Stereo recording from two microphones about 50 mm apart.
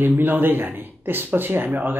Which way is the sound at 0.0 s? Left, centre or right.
Right.